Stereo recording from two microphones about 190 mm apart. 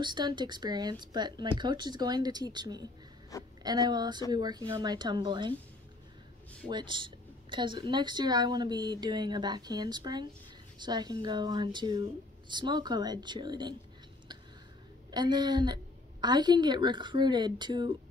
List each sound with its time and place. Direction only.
0.0 s a woman's voice: 25° right (ahead or behind)
3.3 s a woman's voice: 15° left (ahead or behind)
3.6 s a woman's voice: 20° right (ahead or behind)
6.7 s a woman's voice: 25° right (ahead or behind)
15.0 s a woman's voice: 20° right (ahead or behind)